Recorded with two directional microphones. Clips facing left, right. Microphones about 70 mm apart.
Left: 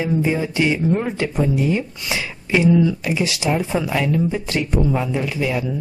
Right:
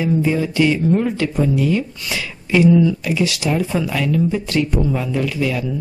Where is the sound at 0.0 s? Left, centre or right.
Left.